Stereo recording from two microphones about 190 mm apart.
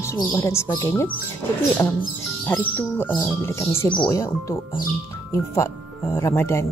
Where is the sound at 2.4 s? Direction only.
10° left (ahead or behind).